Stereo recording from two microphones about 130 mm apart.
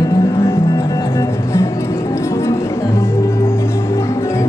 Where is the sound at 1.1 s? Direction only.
20° left (ahead or behind).